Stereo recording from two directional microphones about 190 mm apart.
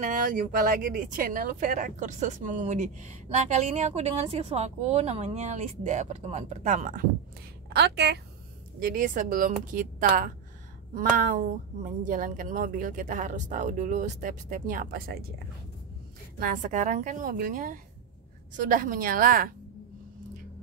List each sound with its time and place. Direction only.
0.0 s speech: 45° right (ahead or behind)
7.7 s a woman's voice: 60° right (ahead or behind)
8.7 s a woman's voice: 50° right (ahead or behind)